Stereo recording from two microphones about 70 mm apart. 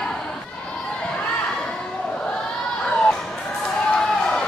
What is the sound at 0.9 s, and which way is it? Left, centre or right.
Crowd, centre.